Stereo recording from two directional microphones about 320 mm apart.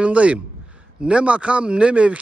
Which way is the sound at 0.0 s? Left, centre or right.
Centre.